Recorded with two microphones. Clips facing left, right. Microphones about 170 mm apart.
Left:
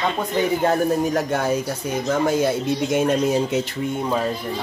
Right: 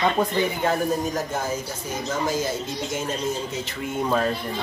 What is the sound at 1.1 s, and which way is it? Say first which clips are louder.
Speech: left 6 dB; 70° left (ahead or behind).